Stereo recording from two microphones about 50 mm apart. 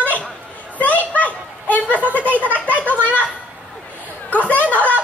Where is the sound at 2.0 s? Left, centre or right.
Right.